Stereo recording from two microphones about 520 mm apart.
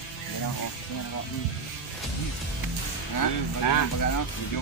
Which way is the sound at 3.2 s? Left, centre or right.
Left.